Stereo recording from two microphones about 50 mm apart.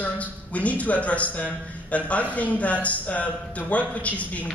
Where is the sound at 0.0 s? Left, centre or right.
Left.